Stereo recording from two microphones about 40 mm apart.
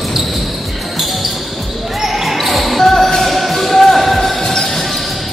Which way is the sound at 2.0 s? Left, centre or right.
Centre.